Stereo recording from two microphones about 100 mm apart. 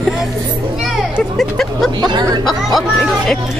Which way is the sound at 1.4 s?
5° left (ahead or behind).